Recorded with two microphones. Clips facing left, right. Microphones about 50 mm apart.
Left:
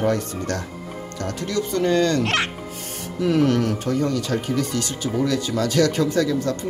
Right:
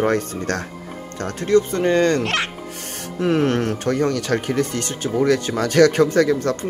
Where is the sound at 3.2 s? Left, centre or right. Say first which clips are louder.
Even; right.